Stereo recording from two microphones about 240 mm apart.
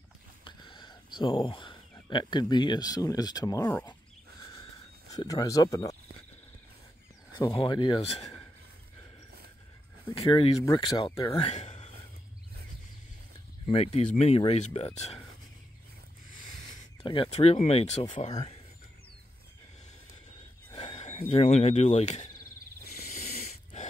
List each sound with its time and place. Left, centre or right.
0.4 s speech: centre
5.1 s speech: centre
7.3 s speech: centre
10.1 s speech: left
11.4 s a sound: left
13.7 s speech: left
17.0 s speech: left
20.7 s speech: left
23.1 s snort: left